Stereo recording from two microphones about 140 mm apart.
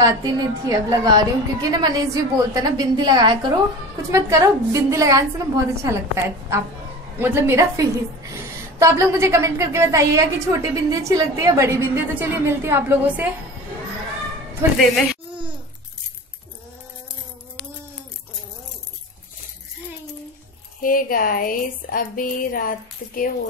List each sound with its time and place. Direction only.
0.0 s a woman's voice: 25° right (ahead or behind)
20.8 s speech: 85° left